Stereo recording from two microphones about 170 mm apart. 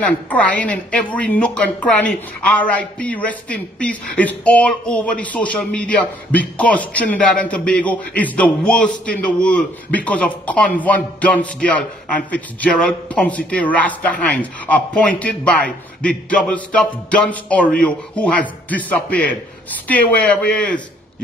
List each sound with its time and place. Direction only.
0.0 s speech: 10° left (ahead or behind)